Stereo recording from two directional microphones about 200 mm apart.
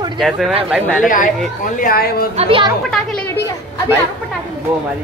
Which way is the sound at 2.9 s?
5° left (ahead or behind).